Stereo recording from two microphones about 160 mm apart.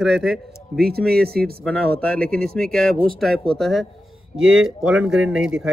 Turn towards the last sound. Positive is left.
turn(degrees=-5)  # may be behind; listen again after turning